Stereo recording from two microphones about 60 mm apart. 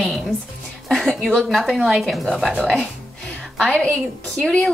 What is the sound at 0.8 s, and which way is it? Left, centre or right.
Speech, centre.